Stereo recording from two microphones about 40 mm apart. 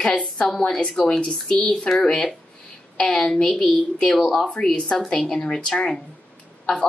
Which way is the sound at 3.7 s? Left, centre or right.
Left.